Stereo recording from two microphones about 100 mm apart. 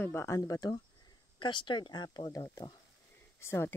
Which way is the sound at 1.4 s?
50° left (ahead or behind).